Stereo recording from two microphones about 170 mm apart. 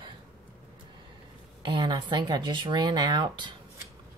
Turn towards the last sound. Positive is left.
turn(degrees=-25)  # may be behind; listen again after turning